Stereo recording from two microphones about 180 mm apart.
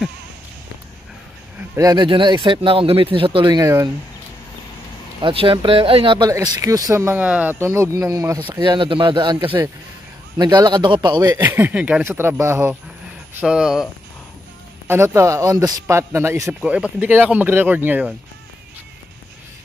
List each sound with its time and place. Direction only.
1.8 s speech: 20° right (ahead or behind)
5.2 s a man's voice: 30° right (ahead or behind)
11.4 s a man's voice: 10° right (ahead or behind)
14.9 s a man's voice: 15° right (ahead or behind)